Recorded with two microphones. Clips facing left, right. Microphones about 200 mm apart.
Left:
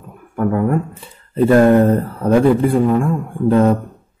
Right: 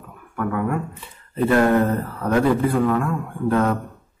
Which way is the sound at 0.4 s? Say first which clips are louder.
Left 6 dB; 35° left (ahead or behind).